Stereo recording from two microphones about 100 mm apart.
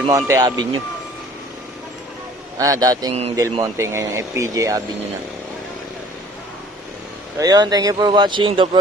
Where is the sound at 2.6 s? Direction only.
35° right (ahead or behind).